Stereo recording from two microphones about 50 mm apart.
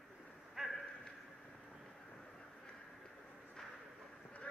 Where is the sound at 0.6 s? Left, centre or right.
Centre.